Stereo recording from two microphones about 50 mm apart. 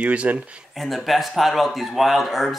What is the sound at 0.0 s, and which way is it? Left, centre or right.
Speech, right.